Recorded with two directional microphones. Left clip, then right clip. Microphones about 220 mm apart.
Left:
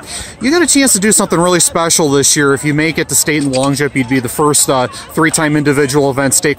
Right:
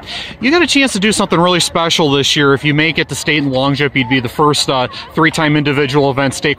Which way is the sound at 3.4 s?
20° left (ahead or behind).